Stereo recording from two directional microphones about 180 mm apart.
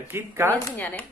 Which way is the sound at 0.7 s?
10° left (ahead or behind).